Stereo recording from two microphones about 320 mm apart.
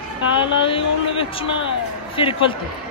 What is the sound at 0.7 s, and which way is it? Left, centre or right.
Speech, centre.